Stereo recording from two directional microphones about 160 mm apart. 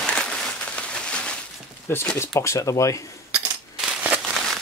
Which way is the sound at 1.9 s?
15° left (ahead or behind).